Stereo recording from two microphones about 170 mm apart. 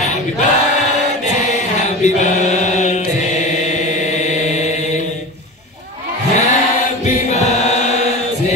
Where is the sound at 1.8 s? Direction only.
45° left (ahead or behind).